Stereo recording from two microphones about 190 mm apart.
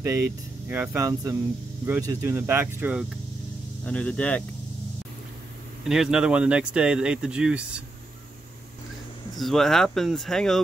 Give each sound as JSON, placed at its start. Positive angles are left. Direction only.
{"t": 0.0, "sound": "speech", "side_deg": -15}
{"t": 3.8, "sound": "speech", "side_deg": 5}
{"t": 5.9, "sound": "speech", "side_deg": -5}
{"t": 9.4, "sound": "speech", "side_deg": 0}